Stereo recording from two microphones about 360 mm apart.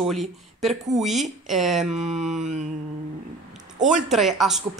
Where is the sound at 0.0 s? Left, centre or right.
Centre.